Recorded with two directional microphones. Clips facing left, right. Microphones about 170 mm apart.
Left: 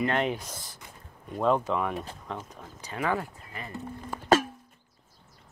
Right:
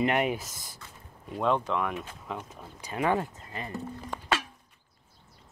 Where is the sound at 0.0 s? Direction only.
10° right (ahead or behind).